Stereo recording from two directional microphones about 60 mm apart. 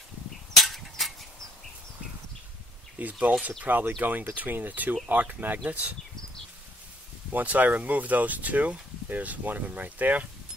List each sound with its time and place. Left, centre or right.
0.6 s a sound: centre
3.0 s speech: right
7.3 s speech: right